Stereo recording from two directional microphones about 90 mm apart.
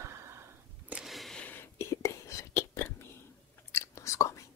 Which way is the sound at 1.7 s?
35° left (ahead or behind).